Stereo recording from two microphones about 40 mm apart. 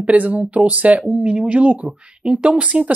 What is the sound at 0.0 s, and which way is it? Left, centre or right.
Speech, right.